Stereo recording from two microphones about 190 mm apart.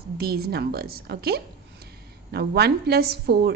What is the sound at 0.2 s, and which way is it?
A woman's voice, 55° right (ahead or behind).